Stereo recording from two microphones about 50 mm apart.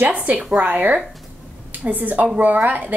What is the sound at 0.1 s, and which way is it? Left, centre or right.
A woman's voice, right.